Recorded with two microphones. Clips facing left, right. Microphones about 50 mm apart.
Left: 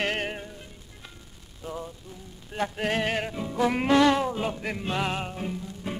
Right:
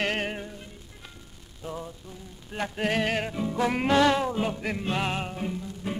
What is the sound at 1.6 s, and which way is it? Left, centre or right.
Music, centre.